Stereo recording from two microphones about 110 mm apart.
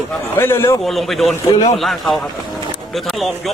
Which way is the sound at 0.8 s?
Centre (ahead or behind).